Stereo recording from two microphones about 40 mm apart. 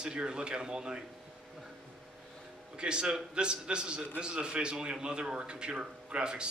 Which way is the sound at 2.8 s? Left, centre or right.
Right.